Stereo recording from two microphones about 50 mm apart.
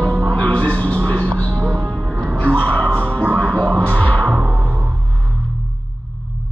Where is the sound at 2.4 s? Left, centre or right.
Left.